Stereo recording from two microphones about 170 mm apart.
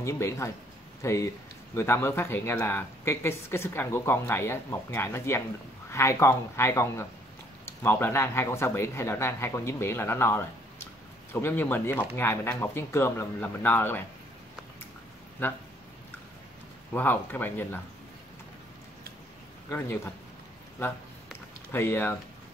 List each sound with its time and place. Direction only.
0.0 s speech: 15° left (ahead or behind)
15.4 s speech: 10° left (ahead or behind)
16.9 s speech: 10° left (ahead or behind)
21.7 s speech: 10° left (ahead or behind)